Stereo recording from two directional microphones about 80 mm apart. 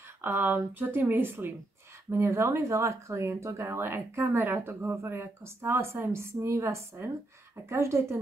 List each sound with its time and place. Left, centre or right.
0.2 s speech: right